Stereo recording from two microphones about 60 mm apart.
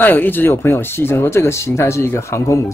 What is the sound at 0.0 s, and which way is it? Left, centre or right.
Speech, left.